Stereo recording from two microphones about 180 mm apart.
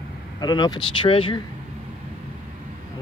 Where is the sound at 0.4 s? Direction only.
25° left (ahead or behind).